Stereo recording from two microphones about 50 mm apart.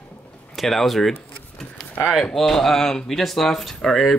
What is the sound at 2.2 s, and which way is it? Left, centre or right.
Speech, centre.